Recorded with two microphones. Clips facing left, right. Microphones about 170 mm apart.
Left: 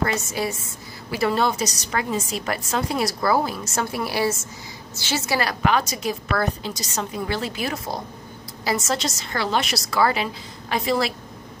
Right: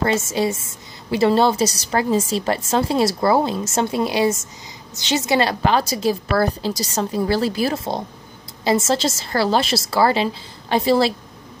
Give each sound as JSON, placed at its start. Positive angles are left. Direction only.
{"t": 0.0, "sound": "a woman's voice", "side_deg": -25}